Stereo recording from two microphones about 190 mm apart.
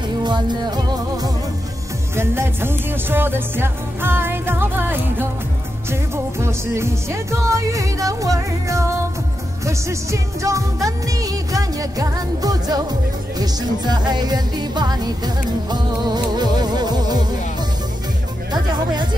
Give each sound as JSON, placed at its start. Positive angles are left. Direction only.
{"t": 0.2, "sound": "music", "side_deg": -25}
{"t": 6.4, "sound": "music", "side_deg": -15}
{"t": 18.5, "sound": "speech", "side_deg": -20}